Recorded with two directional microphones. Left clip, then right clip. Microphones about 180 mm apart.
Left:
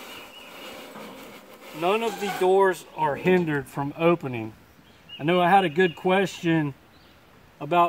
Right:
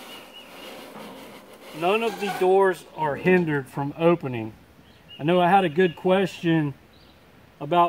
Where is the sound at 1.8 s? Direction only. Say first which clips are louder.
Right 1 dB; 10° left (ahead or behind).